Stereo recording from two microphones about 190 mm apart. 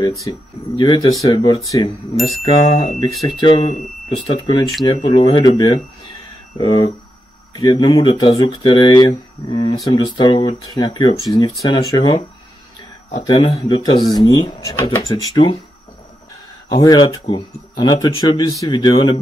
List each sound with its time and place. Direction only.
0.2 s speech: 20° left (ahead or behind)
2.1 s a sound: centre (ahead or behind)
2.4 s speech: 30° left (ahead or behind)
13.1 s speech: 25° left (ahead or behind)
16.7 s speech: 25° left (ahead or behind)